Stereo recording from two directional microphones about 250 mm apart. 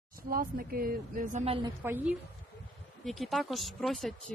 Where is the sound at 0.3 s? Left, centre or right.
Right.